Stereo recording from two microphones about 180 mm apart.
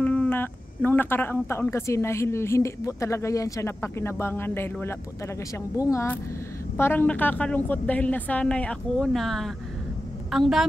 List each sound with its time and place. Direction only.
0.0 s a woman's voice: 10° left (ahead or behind)